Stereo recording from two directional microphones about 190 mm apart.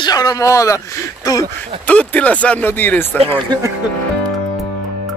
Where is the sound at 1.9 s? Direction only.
5° left (ahead or behind).